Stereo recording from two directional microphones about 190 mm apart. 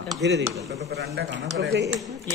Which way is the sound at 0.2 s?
65° right (ahead or behind).